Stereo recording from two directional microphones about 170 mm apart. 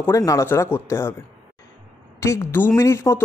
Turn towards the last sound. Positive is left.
turn(degrees=15)  # may be behind; listen again after turning